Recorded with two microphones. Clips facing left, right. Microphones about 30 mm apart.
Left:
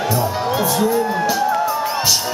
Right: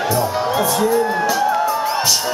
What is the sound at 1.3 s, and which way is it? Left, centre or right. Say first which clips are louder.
Music: right 1 dB; centre.